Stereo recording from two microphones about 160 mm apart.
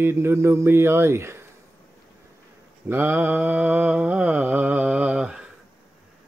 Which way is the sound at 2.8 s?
15° right (ahead or behind).